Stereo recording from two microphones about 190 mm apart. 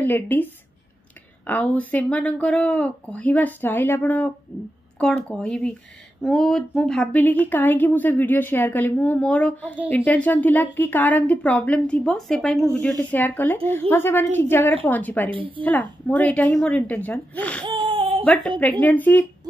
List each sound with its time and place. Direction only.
0.0 s speech: 10° left (ahead or behind)
1.5 s a woman's voice: 10° left (ahead or behind)
15.3 s a woman's voice: 30° right (ahead or behind)
15.6 s a woman's voice: 10° left (ahead or behind)
17.6 s baby cry: 25° right (ahead or behind)
18.2 s a woman's voice: 10° left (ahead or behind)